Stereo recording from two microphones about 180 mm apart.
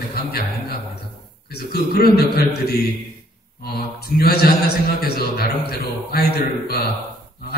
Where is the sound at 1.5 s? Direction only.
60° left (ahead or behind).